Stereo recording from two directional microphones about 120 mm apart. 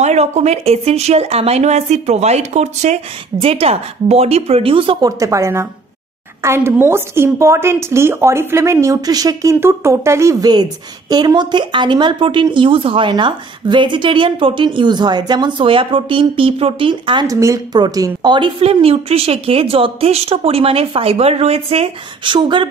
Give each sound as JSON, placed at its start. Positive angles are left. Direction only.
{"t": 0.0, "sound": "a woman's voice", "side_deg": -65}
{"t": 3.3, "sound": "a woman's voice", "side_deg": -50}
{"t": 5.0, "sound": "a woman's voice", "side_deg": -25}
{"t": 17.3, "sound": "a woman's voice", "side_deg": -25}